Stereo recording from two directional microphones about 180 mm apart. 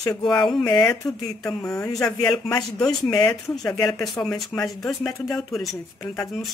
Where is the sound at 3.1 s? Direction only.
25° left (ahead or behind).